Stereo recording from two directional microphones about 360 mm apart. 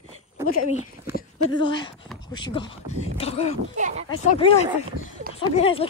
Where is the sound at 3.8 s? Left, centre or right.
Centre.